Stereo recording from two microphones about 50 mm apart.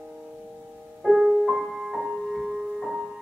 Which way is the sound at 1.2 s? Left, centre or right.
Centre.